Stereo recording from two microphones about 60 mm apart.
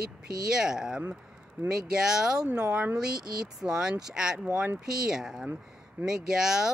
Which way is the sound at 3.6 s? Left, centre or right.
Centre.